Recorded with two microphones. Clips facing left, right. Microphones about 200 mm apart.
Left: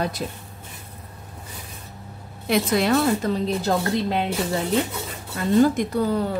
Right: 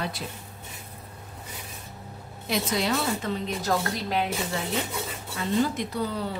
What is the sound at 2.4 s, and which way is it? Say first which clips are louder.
Speech: left 6 dB; 60° left (ahead or behind).